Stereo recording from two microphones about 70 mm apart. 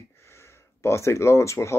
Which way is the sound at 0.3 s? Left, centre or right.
Left.